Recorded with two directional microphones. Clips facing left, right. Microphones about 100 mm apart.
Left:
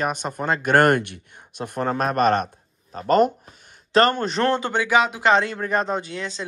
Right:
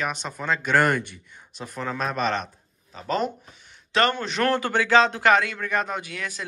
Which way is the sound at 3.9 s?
40° left (ahead or behind).